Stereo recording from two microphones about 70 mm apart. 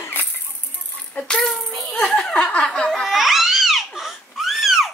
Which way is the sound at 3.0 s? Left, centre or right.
Centre.